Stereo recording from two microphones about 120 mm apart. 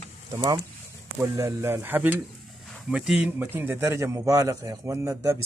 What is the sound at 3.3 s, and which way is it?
A man's voice, 20° right (ahead or behind).